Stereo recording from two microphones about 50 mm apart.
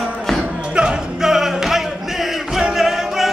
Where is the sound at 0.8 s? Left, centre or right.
Centre.